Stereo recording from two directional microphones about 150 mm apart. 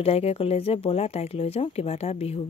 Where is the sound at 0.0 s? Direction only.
40° left (ahead or behind).